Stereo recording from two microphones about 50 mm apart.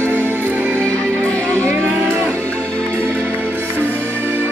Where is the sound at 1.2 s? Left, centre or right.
Left.